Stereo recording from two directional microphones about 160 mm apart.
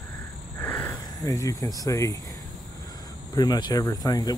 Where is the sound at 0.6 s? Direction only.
15° left (ahead or behind).